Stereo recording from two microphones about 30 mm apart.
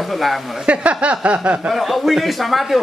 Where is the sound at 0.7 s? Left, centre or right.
Right.